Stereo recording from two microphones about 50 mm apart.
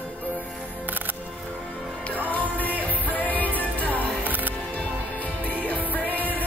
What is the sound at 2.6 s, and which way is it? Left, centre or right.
Music, left.